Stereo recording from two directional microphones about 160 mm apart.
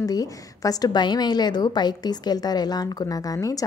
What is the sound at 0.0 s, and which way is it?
A woman's voice, 20° left (ahead or behind).